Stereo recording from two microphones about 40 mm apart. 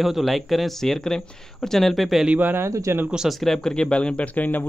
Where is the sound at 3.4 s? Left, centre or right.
Centre; by 4.2 s left.